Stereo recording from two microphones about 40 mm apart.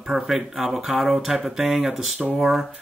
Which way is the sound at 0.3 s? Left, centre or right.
Centre.